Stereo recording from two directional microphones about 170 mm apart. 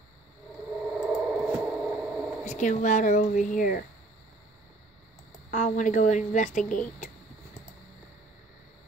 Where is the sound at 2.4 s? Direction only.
45° left (ahead or behind).